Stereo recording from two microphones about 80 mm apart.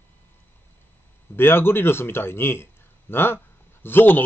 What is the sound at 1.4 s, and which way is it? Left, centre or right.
A man's voice, left.